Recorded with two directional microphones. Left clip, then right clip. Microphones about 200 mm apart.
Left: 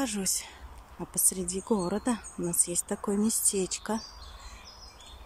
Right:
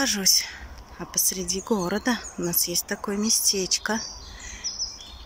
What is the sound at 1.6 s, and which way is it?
Speech, centre (ahead or behind).